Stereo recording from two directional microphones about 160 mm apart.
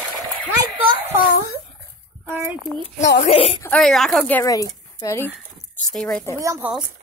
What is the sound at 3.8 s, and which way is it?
Female singing, centre (ahead or behind).